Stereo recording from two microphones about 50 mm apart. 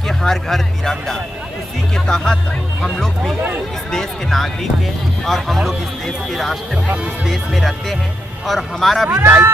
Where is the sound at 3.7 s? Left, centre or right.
Centre.